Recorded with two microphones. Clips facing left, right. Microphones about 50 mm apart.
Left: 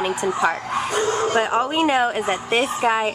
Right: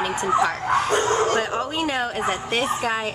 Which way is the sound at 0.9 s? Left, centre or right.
Right.